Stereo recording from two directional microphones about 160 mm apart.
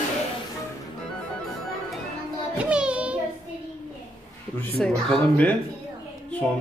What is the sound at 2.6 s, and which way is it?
Child singing, 5° right (ahead or behind).